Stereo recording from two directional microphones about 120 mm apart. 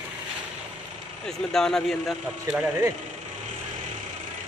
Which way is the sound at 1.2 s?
5° left (ahead or behind).